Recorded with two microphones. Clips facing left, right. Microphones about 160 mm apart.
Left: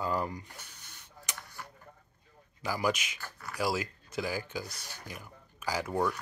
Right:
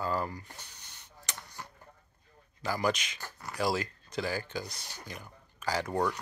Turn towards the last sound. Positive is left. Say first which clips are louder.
# right 1 dB
turn(degrees=10)  # may be behind; listen again after turning